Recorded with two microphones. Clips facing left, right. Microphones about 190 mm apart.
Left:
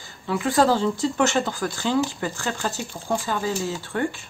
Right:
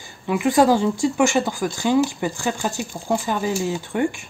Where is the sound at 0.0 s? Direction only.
15° right (ahead or behind).